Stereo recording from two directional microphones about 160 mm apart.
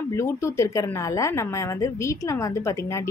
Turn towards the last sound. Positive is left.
turn(degrees=20)  # may be behind; listen again after turning